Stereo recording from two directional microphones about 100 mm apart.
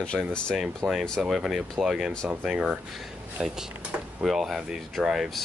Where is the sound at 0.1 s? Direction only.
10° right (ahead or behind).